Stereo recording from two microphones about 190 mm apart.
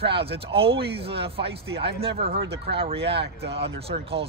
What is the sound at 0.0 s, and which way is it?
Speech, 30° right (ahead or behind).